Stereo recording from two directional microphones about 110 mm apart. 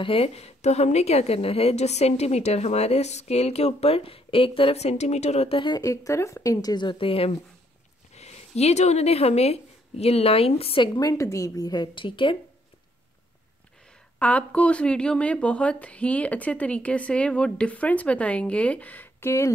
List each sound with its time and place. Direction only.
0.0 s a woman's voice: 60° left (ahead or behind); by 5.6 s 75° left (ahead or behind)
5.6 s speech: 35° left (ahead or behind); by 7.3 s 60° left (ahead or behind)
8.2 s a woman's voice: 85° left; by 10.8 s 65° left (ahead or behind)
10.8 s speech: 35° left (ahead or behind); by 12.4 s 50° left (ahead or behind)
14.2 s speech: 10° left (ahead or behind)